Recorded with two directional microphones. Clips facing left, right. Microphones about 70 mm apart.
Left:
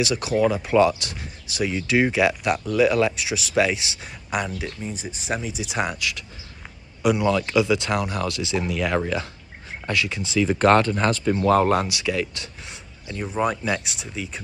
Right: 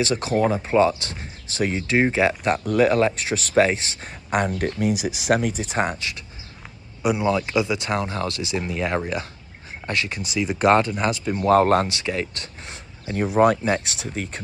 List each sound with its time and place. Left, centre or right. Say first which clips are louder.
0.0 s speech: even; right
4.7 s speech: right 9 dB; right; by 11.4 s centre
11.4 s speech: right 3 dB; right